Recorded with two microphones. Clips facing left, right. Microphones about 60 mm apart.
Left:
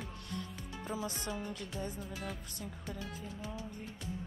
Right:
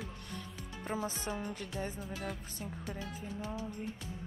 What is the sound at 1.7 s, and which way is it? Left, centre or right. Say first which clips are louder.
Speech: right 2 dB; right.